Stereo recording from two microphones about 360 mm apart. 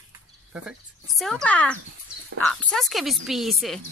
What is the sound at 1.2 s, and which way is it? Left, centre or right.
Speech, centre.